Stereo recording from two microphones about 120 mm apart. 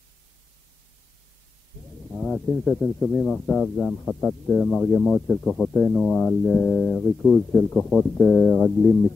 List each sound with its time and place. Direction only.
2.0 s speech: centre (ahead or behind)